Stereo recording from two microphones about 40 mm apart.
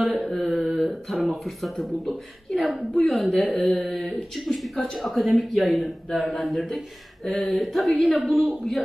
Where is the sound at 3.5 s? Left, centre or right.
Centre.